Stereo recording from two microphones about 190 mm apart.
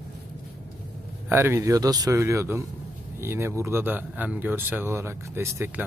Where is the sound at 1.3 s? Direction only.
15° right (ahead or behind).